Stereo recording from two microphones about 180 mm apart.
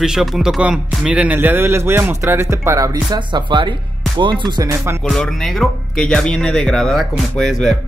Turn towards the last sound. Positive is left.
turn(degrees=0)  # may be behind; listen again after turning